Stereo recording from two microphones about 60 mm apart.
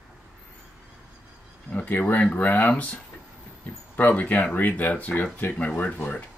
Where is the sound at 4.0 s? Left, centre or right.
Left.